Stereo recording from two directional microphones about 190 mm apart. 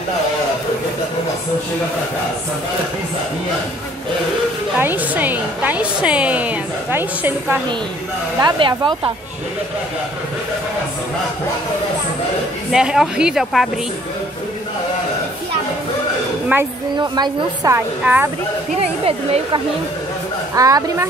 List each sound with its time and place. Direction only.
4.7 s a woman's voice: 10° right (ahead or behind)
8.4 s speech: 25° right (ahead or behind)
12.7 s speech: 5° right (ahead or behind)
16.5 s a woman's voice: 10° right (ahead or behind)
17.0 s a woman's voice: 20° right (ahead or behind)
19.0 s speech: 30° right (ahead or behind)
20.5 s a woman's voice: 20° right (ahead or behind)